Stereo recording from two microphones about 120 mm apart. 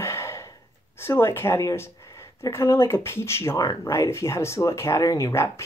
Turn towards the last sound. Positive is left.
turn(degrees=25)  # may be behind; listen again after turning